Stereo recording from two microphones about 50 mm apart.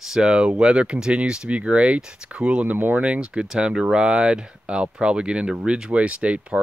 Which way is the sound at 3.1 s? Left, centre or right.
Right.